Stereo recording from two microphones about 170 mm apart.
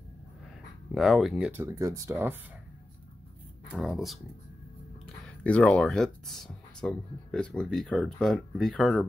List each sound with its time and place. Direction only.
0.9 s speech: centre (ahead or behind)
1.6 s speech: 20° right (ahead or behind)
3.7 s speech: centre (ahead or behind)